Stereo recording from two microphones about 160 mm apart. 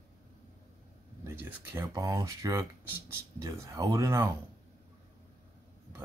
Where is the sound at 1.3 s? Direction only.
15° right (ahead or behind).